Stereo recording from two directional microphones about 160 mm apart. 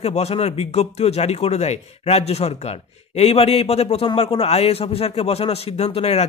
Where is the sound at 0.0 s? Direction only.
40° left (ahead or behind).